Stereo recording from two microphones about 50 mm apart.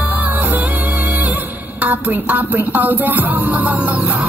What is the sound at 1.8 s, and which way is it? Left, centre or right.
Music, right.